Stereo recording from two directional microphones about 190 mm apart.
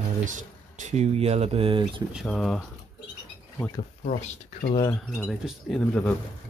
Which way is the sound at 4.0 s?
35° left (ahead or behind).